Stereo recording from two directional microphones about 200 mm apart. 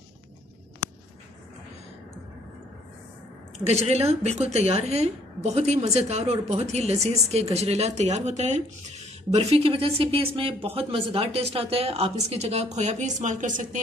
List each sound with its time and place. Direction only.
3.5 s a woman's voice: 30° right (ahead or behind)